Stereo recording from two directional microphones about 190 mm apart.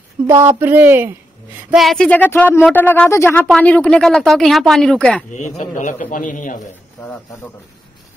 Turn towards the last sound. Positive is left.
turn(degrees=45)  # may be behind; listen again after turning